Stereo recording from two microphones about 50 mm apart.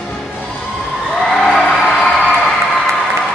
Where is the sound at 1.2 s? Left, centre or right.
Centre.